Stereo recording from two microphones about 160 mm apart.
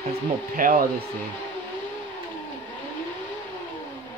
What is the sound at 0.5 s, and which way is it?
Speech, 60° right (ahead or behind).